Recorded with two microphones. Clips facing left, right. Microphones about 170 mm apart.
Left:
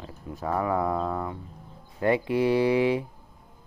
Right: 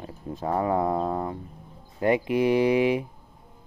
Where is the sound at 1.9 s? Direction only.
20° right (ahead or behind).